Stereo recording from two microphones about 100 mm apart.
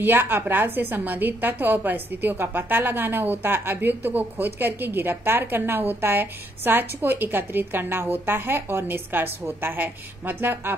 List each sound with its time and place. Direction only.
0.0 s a woman's voice: 20° right (ahead or behind)